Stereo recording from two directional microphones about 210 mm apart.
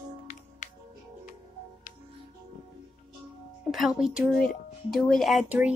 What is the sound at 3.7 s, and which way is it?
Speech, centre (ahead or behind).